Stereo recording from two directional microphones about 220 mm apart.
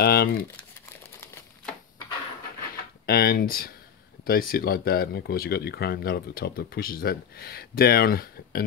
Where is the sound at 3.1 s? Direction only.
45° left (ahead or behind).